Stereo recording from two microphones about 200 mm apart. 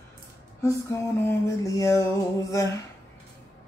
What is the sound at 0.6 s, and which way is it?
Music, 15° left (ahead or behind).